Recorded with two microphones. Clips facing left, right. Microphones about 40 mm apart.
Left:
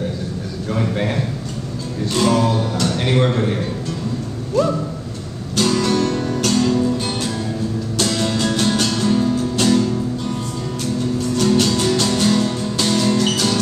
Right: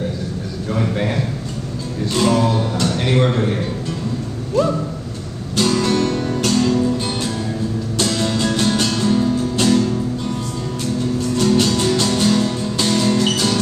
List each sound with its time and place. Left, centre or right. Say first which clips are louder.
0.7 s a man's voice: even; centre
2.0 s music: even; centre
2.6 s speech: even; centre
2.9 s a sound: even; centre
3.3 s music: even; centre
4.6 s a sound: even; centre
5.8 s music: even; centre
11.3 s music: even; centre